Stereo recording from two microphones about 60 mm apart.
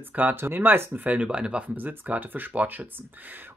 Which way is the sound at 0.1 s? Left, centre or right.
Right.